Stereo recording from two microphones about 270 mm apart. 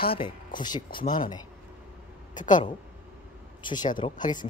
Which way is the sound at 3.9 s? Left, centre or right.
Centre.